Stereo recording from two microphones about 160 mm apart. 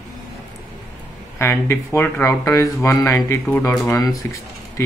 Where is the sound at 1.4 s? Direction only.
15° left (ahead or behind).